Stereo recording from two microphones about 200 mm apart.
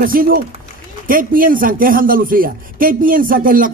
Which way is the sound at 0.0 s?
45° right (ahead or behind).